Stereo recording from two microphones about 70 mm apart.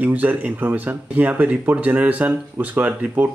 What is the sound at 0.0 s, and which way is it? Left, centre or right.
Speech, right.